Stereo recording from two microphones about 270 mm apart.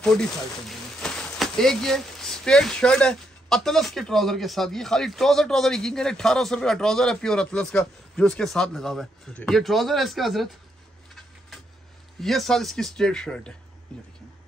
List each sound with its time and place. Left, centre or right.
0.0 s speech: centre
12.2 s speech: centre